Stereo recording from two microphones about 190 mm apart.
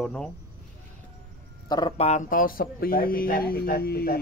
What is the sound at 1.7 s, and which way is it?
Speech, 25° left (ahead or behind).